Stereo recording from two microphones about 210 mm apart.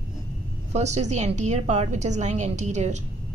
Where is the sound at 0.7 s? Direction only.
35° right (ahead or behind).